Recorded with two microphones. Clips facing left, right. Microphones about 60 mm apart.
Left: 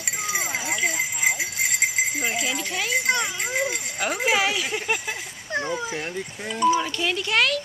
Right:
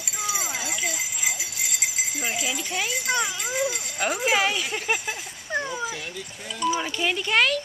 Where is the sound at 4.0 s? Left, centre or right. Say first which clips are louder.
Even; centre.